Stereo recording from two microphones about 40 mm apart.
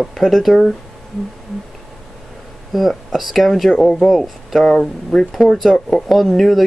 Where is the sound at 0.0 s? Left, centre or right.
Centre.